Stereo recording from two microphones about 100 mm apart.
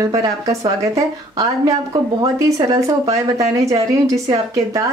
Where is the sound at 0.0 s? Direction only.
35° right (ahead or behind).